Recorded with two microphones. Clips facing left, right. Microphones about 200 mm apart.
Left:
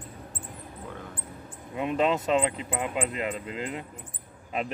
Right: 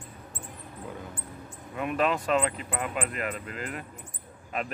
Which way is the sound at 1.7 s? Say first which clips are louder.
Left 2 dB; 20° left (ahead or behind).